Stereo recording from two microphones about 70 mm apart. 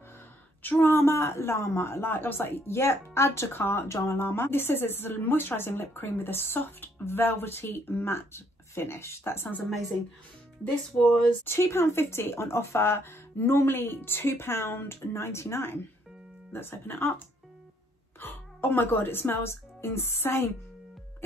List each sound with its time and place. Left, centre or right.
0.6 s speech: left
4.3 s speech: left
11.0 s speech: left
18.2 s speech: left